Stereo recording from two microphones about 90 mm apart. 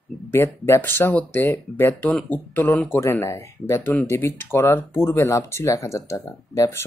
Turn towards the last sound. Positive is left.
turn(degrees=30)  # may be behind; listen again after turning